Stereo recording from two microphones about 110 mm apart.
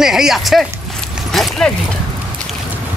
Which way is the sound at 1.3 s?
5° left (ahead or behind).